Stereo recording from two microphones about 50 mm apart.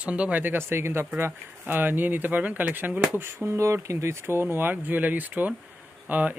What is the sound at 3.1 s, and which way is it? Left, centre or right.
Speech, right.